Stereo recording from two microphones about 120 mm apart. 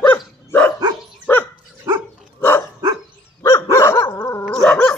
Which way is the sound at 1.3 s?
20° left (ahead or behind).